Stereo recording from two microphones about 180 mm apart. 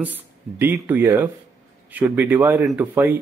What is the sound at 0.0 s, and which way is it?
Speech, 10° right (ahead or behind).